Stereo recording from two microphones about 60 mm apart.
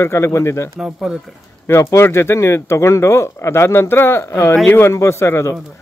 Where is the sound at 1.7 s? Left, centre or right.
Left.